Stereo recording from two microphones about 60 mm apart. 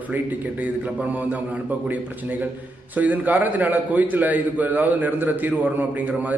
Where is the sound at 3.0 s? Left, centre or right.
Right.